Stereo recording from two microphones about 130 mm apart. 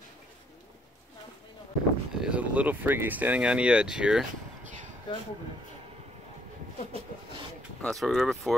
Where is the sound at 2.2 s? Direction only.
10° right (ahead or behind).